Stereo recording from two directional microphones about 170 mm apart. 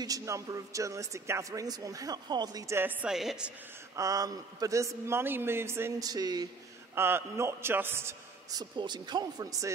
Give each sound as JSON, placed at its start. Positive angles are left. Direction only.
{"t": 0.0, "sound": "a man's voice", "side_deg": -20}
{"t": 3.9, "sound": "a man's voice", "side_deg": -20}